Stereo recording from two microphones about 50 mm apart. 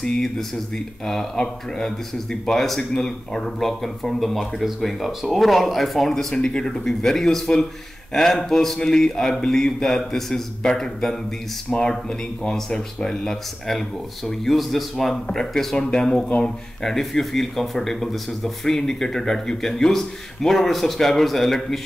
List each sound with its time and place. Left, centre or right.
0.0 s speech: centre